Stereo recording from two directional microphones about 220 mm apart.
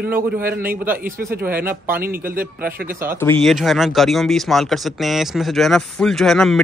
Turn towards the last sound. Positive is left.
turn(degrees=0)  # may be behind; listen again after turning